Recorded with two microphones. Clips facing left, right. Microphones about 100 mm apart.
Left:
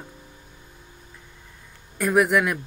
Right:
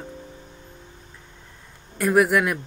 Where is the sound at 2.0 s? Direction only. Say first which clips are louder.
Right 1 dB; centre (ahead or behind).